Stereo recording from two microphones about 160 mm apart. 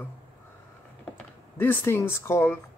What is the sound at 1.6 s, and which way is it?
Speech, 15° left (ahead or behind).